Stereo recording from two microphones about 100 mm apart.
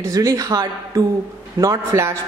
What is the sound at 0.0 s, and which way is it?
A man's voice, 35° right (ahead or behind).